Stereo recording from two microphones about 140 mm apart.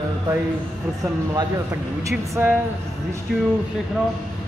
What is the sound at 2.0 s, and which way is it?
Speech, 15° right (ahead or behind).